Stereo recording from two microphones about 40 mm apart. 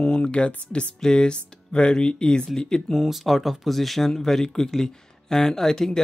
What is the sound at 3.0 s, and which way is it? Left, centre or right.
Speech, centre.